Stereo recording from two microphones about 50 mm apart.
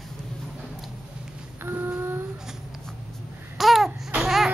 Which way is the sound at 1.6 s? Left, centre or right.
Right.